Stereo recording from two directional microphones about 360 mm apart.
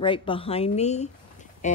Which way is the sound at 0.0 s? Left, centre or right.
Centre.